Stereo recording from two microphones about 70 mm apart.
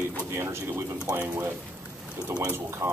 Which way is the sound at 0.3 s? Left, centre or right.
Right.